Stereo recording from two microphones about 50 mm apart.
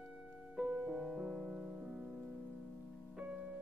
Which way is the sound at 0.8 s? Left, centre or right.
Centre.